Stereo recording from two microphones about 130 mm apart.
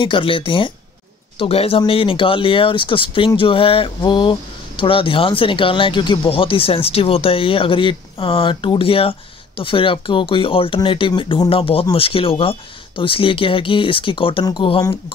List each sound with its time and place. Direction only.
0.0 s speech: 40° left (ahead or behind)